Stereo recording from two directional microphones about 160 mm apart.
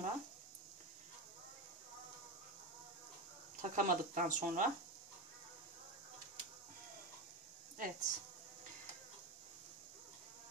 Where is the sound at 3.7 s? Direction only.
50° right (ahead or behind).